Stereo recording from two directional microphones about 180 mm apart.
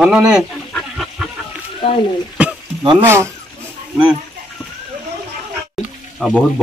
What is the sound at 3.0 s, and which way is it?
Speech, 15° right (ahead or behind).